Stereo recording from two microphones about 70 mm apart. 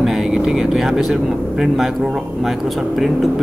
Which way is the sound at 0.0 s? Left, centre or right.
Centre.